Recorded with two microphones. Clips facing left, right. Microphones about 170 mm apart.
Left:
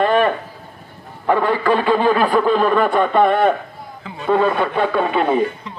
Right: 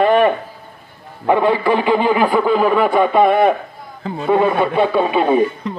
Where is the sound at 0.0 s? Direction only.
15° right (ahead or behind).